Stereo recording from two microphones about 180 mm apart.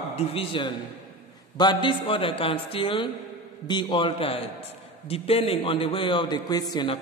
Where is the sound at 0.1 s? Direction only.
30° left (ahead or behind).